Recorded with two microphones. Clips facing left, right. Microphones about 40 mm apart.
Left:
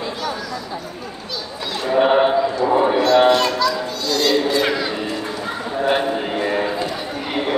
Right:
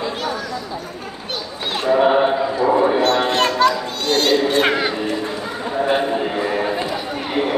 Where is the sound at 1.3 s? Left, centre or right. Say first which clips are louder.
Right 3 dB; right.